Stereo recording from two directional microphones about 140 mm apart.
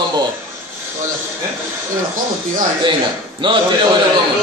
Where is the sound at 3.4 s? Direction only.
35° right (ahead or behind).